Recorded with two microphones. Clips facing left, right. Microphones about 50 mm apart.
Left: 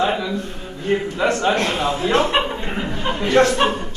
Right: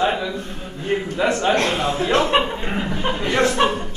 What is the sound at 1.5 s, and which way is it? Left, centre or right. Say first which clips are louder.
Speech: right 1 dB; right.